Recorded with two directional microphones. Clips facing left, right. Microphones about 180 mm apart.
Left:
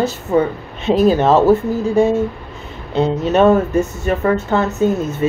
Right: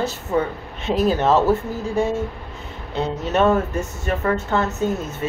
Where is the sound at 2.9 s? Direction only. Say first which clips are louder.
Left 7 dB; 20° left (ahead or behind).